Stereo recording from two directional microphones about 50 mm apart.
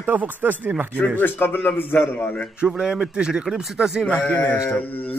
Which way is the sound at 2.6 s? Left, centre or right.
Centre.